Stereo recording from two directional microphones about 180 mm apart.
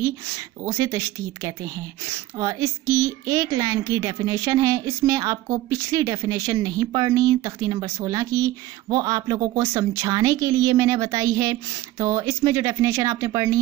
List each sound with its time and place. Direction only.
0.7 s a woman's voice: 15° right (ahead or behind)